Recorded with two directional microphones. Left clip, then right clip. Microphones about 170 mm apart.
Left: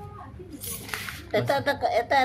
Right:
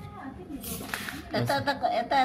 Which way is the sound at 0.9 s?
50° left (ahead or behind).